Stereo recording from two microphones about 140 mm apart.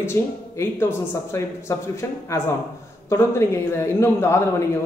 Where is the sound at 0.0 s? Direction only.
15° left (ahead or behind).